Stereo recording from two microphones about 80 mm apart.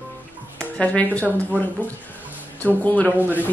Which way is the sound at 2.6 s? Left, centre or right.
Centre.